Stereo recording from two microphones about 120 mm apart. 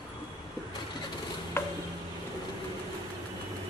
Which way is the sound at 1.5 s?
25° left (ahead or behind).